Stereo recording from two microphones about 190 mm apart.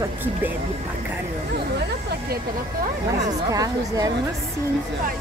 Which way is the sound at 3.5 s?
20° right (ahead or behind).